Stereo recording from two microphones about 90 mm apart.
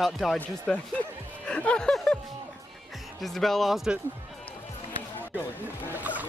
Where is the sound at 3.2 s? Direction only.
5° left (ahead or behind).